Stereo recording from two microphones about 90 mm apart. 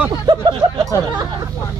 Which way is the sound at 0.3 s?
60° right (ahead or behind).